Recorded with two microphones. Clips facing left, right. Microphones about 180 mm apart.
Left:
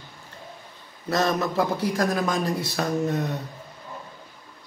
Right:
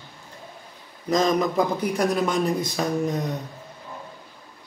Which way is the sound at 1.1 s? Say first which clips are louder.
Right 3 dB; 15° right (ahead or behind).